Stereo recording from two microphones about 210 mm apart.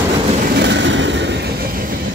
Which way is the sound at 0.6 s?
60° right (ahead or behind).